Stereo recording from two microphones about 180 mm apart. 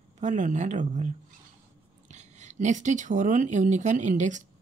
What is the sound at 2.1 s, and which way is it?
Speech, 40° right (ahead or behind).